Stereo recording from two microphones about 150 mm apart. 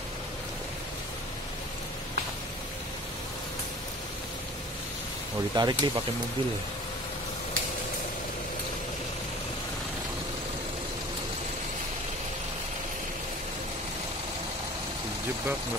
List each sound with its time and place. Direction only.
5.5 s speech: 30° right (ahead or behind)